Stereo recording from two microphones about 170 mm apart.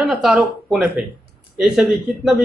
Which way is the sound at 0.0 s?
5° right (ahead or behind).